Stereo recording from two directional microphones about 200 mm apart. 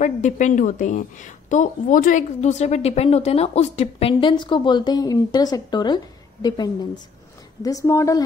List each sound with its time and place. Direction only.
0.0 s a woman's voice: 40° left (ahead or behind); by 8.2 s 15° left (ahead or behind)